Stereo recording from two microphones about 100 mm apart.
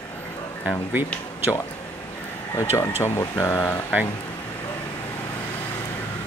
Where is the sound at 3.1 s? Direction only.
40° left (ahead or behind).